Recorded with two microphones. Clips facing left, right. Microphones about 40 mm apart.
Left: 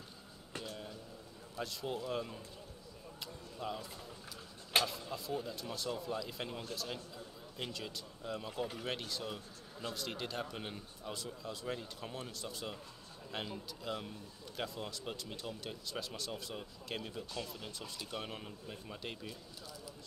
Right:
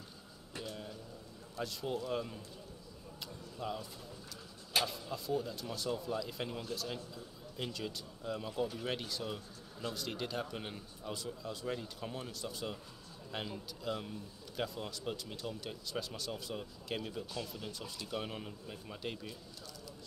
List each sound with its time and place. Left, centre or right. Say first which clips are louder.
0.7 s a sound: right 3 dB; centre
1.6 s speech: right 2 dB; centre
3.5 s speech: right 1 dB; centre
4.8 s speech: right 1 dB; centre